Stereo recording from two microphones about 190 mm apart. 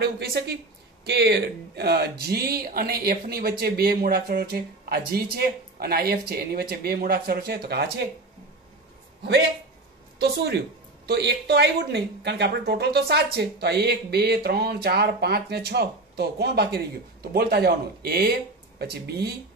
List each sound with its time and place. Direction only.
0.0 s speech: 60° right (ahead or behind)
10.1 s a woman's voice: 60° right (ahead or behind)